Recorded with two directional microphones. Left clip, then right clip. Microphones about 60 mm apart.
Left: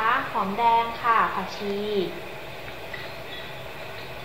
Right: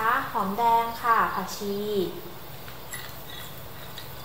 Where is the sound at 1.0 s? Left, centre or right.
Right.